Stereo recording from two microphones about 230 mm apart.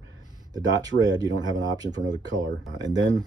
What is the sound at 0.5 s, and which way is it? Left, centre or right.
Speech, centre.